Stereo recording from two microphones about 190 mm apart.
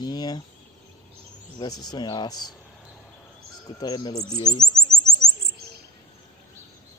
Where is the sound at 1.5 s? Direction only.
25° left (ahead or behind).